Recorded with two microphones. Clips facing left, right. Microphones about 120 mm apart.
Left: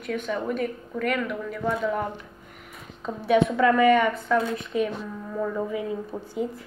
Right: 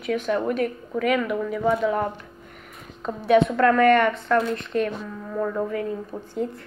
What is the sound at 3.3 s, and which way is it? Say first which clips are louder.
A woman's voice: right 2 dB; centre (ahead or behind).